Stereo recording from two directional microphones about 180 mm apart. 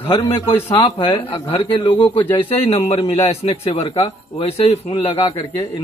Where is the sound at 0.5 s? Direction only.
15° left (ahead or behind).